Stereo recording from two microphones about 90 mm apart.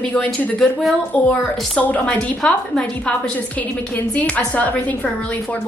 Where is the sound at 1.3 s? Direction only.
15° left (ahead or behind).